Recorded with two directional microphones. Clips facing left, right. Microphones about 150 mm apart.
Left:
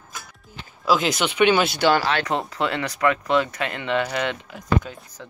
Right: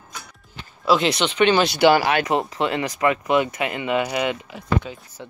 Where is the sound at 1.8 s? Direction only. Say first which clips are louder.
Right 4 dB; 10° right (ahead or behind).